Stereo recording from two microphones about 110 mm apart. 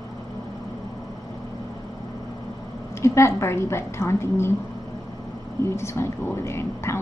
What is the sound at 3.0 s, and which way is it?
Speech, 25° left (ahead or behind).